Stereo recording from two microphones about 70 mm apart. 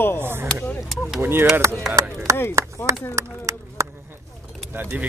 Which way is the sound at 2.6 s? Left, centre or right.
Right.